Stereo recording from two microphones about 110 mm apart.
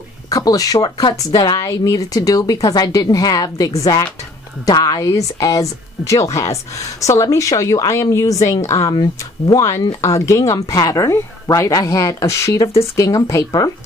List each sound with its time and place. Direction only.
0.3 s a woman's voice: 35° left (ahead or behind)